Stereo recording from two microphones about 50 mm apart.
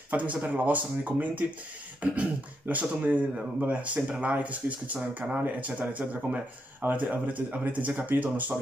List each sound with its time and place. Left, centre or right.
0.1 s speech: right
2.0 s beatboxing: right
2.7 s speech: right